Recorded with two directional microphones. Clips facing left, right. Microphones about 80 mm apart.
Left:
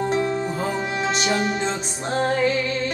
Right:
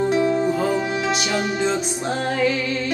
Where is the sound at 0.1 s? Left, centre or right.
Left.